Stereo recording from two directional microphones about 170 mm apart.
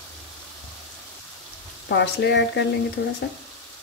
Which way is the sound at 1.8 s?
85° left.